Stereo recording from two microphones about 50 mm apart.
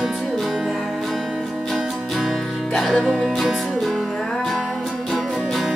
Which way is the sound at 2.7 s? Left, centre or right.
Centre.